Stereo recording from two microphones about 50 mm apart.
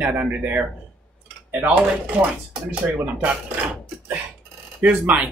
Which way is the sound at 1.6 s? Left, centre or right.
Right.